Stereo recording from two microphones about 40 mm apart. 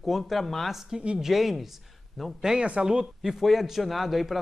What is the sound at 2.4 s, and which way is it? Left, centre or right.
A man's voice, centre.